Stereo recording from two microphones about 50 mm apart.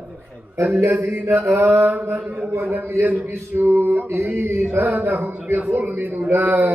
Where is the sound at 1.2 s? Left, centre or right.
Right.